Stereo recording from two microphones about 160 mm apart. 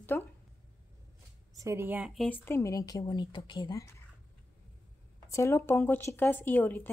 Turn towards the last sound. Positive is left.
turn(degrees=10)  # may be behind; listen again after turning